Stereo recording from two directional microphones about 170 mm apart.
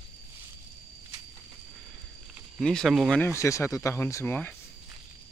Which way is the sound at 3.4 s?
15° left (ahead or behind).